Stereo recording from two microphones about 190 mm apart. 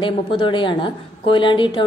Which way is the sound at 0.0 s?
25° left (ahead or behind).